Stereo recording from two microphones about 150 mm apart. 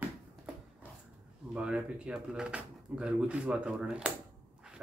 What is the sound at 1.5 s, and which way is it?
Speech, 5° right (ahead or behind).